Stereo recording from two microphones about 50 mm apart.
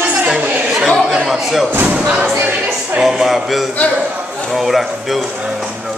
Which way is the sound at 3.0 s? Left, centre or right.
Centre.